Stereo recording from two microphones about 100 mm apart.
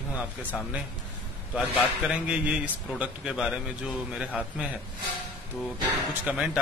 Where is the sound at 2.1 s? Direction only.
10° right (ahead or behind).